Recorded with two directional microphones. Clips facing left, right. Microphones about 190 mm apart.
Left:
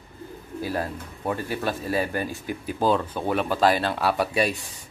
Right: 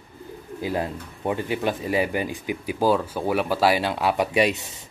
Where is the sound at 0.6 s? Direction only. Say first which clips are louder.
Right 2 dB; 20° right (ahead or behind).